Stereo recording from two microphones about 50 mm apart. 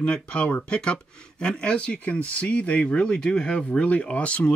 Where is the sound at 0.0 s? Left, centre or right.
Left.